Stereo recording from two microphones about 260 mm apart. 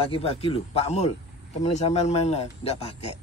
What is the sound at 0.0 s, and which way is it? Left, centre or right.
Speech, left.